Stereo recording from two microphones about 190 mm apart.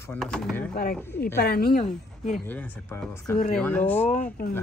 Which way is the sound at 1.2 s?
55° left (ahead or behind).